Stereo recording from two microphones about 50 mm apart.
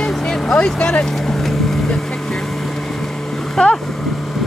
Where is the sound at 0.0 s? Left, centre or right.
Centre.